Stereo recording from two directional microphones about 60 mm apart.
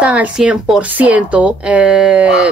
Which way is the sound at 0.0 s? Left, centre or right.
Right.